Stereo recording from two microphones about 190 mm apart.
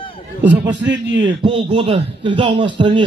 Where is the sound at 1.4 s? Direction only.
25° right (ahead or behind).